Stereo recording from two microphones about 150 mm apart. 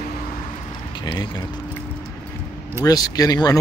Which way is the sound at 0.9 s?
25° left (ahead or behind).